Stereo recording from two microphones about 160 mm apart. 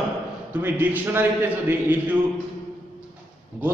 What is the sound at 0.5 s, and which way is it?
A man's voice, 10° right (ahead or behind).